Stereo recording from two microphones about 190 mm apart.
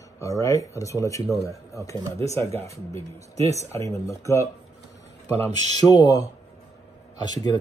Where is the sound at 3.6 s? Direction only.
15° left (ahead or behind).